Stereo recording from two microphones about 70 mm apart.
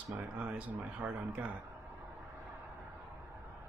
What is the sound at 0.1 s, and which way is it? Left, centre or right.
Speech, right.